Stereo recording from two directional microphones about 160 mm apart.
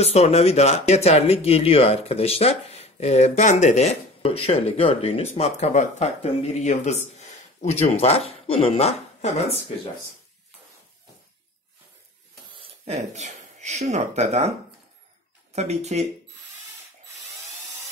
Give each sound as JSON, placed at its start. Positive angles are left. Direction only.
{"t": 0.0, "sound": "speech", "side_deg": 40}
{"t": 12.5, "sound": "speech", "side_deg": -45}
{"t": 15.5, "sound": "speech", "side_deg": -45}